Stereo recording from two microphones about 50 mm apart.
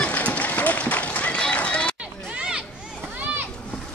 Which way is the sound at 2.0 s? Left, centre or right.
Centre.